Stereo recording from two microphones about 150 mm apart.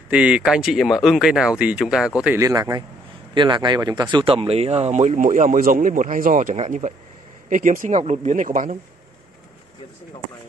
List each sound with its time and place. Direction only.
0.1 s speech: 10° right (ahead or behind)
2.3 s speech: 20° right (ahead or behind); by 6.5 s 65° right (ahead or behind)
6.5 s speech: 55° right (ahead or behind)
8.0 s speech: 50° right (ahead or behind)